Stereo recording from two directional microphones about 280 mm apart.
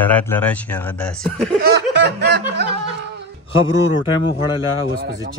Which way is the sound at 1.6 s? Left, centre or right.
Right.